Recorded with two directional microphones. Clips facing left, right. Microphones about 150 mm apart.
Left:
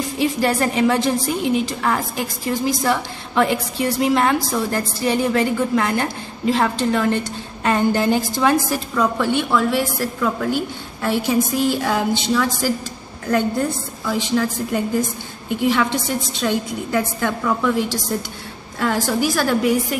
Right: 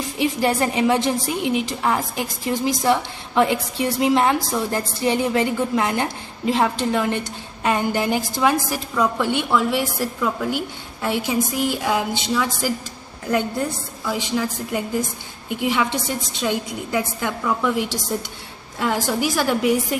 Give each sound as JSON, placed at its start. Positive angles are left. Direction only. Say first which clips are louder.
{"t": 0.2, "sound": "a woman's voice", "louder": "left 1 dB", "side_deg": -20}
{"t": 14.0, "sound": "a woman's voice", "louder": "left 3 dB", "side_deg": -10}